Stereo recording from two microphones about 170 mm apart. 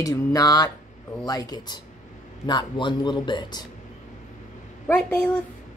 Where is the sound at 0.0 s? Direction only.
20° left (ahead or behind).